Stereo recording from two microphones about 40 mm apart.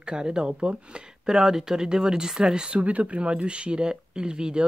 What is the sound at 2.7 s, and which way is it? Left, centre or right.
Speech, right.